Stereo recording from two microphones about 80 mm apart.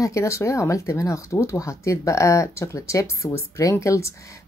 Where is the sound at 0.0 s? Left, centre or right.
Left.